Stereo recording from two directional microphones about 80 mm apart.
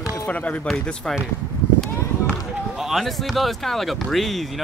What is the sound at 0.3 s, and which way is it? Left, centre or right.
Speech, centre.